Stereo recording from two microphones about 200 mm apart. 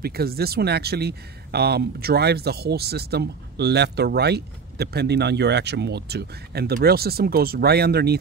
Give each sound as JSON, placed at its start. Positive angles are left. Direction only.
{"t": 0.0, "sound": "speech", "side_deg": -50}